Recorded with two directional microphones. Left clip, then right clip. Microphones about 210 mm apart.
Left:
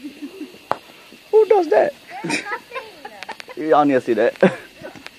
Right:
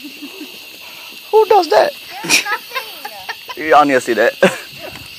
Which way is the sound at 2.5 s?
10° left (ahead or behind).